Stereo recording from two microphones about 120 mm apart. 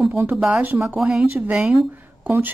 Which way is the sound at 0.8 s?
5° right (ahead or behind).